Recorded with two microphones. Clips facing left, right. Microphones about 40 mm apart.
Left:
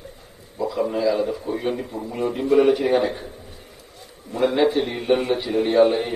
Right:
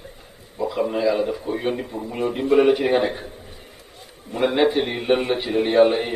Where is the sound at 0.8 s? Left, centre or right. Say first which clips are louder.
Even; right.